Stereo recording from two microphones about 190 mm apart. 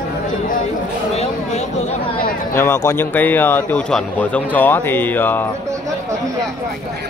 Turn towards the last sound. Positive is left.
turn(degrees=10)  # may be behind; listen again after turning